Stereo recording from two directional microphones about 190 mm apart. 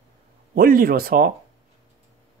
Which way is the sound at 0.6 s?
50° right (ahead or behind).